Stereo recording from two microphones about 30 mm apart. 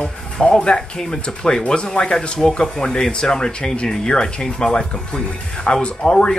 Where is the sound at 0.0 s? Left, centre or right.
Left.